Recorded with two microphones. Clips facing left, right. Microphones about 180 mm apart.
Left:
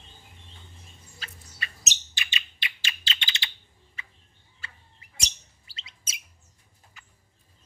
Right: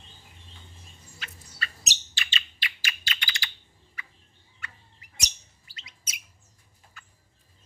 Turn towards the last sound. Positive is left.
turn(degrees=25)  # may be behind; listen again after turning